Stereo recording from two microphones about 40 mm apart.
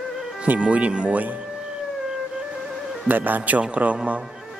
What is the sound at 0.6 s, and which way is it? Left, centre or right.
Speech, right.